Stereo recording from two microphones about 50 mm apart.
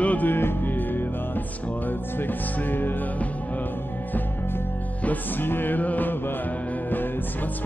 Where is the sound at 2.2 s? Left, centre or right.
Left.